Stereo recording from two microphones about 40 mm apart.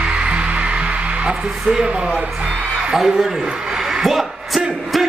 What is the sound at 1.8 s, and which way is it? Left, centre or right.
Speech, right.